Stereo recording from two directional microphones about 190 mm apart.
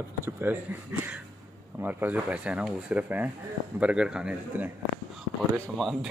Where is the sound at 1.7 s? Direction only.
10° right (ahead or behind).